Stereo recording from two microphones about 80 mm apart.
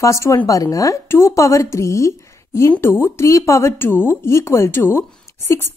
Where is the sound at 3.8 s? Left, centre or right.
Left.